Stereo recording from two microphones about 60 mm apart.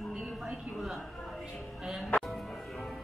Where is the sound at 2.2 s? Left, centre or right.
Centre.